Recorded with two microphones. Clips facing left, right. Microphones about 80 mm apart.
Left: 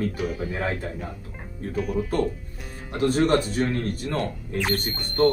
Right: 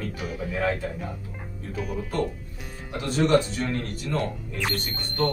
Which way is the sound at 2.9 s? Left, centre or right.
Left.